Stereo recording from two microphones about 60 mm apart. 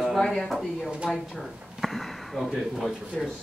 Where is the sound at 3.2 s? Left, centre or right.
Centre.